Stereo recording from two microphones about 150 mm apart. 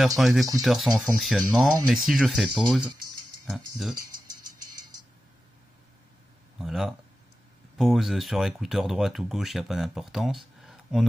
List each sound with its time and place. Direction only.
0.2 s speech: centre (ahead or behind)
6.6 s speech: centre (ahead or behind)